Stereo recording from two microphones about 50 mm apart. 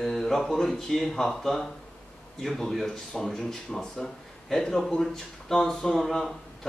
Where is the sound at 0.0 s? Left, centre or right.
Centre.